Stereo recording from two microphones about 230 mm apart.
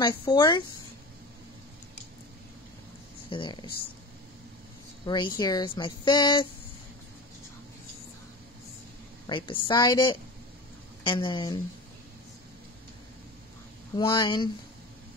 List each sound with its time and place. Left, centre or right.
0.0 s speech: centre
3.3 s speech: left
5.0 s speech: centre
9.3 s speech: centre
13.9 s speech: centre